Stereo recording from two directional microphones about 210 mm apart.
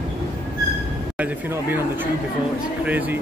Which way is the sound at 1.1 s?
10° right (ahead or behind).